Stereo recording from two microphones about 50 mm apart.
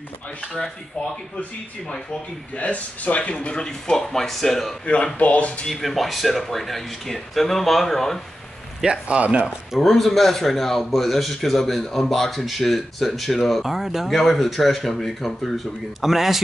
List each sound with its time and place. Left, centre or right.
2.5 s speech: left; by 4.7 s centre
4.8 s speech: left
5.7 s speech: centre
9.0 s speech: right
9.8 s speech: centre